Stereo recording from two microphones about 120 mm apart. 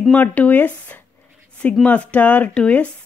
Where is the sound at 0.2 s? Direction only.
15° left (ahead or behind).